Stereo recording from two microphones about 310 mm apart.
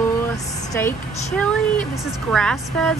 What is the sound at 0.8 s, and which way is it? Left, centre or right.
A woman's voice, centre.